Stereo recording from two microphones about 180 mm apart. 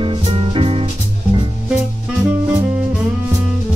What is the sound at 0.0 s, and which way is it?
Music, 30° right (ahead or behind).